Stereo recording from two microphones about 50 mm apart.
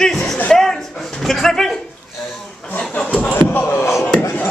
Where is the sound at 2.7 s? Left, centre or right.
Left.